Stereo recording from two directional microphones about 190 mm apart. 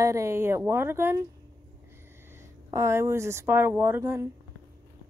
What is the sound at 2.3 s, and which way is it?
Speech, 15° right (ahead or behind).